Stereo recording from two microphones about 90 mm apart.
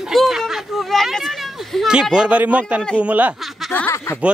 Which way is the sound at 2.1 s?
15° right (ahead or behind).